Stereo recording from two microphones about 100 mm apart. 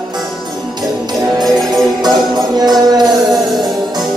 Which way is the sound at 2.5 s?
40° right (ahead or behind).